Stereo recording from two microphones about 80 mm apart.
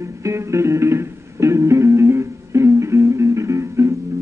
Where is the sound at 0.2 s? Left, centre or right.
Right.